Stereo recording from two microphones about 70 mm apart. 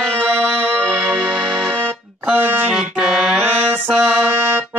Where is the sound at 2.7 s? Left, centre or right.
Centre.